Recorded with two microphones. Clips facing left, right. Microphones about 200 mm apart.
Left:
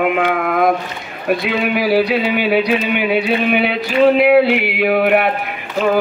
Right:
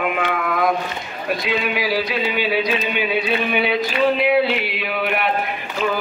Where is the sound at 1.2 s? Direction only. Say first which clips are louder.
Left 5 dB; 55° left (ahead or behind).